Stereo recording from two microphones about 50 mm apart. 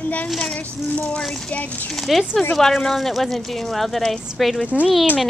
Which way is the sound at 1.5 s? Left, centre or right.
Left.